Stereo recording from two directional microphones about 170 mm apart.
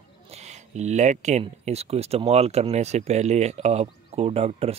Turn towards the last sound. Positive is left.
turn(degrees=-40)  # may be behind; listen again after turning